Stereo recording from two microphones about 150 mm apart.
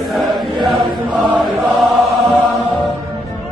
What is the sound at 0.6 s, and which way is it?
Chant, centre (ahead or behind).